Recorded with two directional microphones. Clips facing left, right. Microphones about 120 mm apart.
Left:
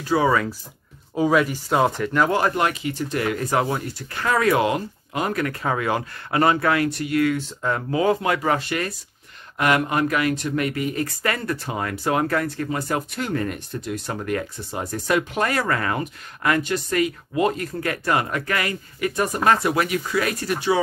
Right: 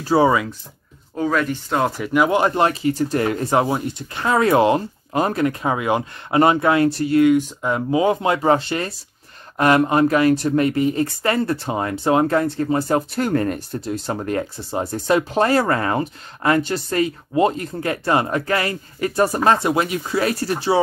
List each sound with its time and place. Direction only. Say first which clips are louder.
0.0 s speech: right 4 dB; 35° right (ahead or behind)
1.1 s speech: left 1 dB; 10° left (ahead or behind)
2.0 s speech: right 3 dB; 10° right (ahead or behind); by 13.2 s 30° right (ahead or behind)
13.2 s speech: right 6 dB; 40° right (ahead or behind)